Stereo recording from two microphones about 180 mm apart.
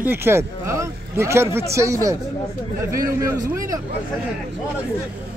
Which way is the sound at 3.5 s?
15° right (ahead or behind).